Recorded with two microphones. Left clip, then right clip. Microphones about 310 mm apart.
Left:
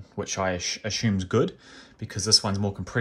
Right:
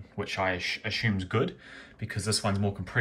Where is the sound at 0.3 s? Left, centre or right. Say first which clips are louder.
Left 1 dB; left.